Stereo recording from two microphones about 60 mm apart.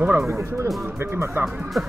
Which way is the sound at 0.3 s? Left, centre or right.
Right.